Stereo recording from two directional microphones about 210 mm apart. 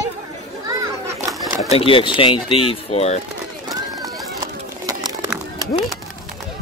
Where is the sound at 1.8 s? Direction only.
25° left (ahead or behind).